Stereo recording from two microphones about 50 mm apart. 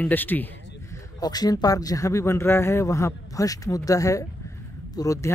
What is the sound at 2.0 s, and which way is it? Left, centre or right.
A man's voice, left.